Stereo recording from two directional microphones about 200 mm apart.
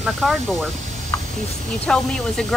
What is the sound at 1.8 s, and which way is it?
Speech, 5° left (ahead or behind).